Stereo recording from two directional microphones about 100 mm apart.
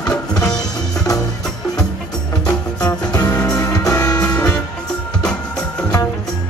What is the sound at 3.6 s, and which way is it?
Music, 35° left (ahead or behind).